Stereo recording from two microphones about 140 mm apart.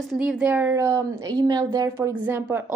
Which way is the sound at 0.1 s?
5° right (ahead or behind).